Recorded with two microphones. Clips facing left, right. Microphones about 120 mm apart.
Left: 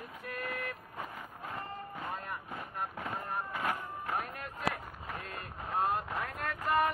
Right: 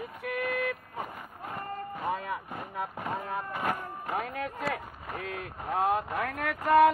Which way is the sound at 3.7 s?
85° right.